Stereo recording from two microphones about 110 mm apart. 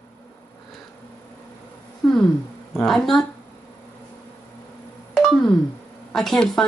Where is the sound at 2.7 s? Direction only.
5° left (ahead or behind).